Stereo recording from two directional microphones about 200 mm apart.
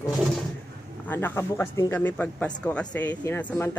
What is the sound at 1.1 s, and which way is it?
Speech, 10° left (ahead or behind).